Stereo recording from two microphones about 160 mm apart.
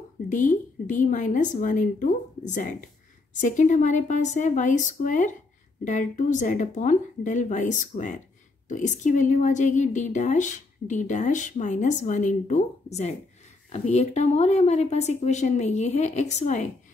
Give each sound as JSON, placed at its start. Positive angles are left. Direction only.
{"t": 0.3, "sound": "a woman's voice", "side_deg": 55}